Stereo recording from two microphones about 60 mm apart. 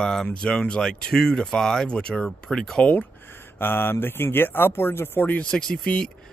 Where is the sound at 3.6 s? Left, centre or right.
Left.